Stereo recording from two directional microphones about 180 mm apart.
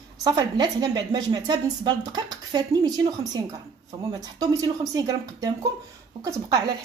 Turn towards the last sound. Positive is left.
turn(degrees=-20)  # may be behind; listen again after turning